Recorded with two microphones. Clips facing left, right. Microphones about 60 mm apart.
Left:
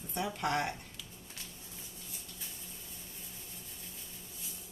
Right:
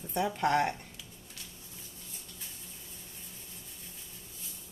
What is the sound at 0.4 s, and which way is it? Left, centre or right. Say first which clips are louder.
Speech: right 6 dB; right.